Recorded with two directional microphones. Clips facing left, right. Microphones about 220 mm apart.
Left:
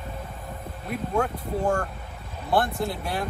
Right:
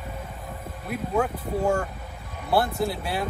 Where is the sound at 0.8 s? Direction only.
5° right (ahead or behind).